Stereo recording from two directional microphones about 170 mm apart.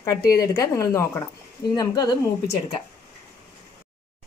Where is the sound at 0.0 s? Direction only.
20° left (ahead or behind).